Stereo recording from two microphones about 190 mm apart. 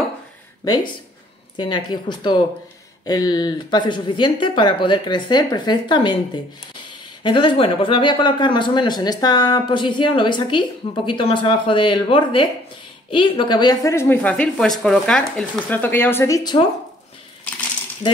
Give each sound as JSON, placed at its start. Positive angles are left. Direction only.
{"t": 1.6, "sound": "speech", "side_deg": 25}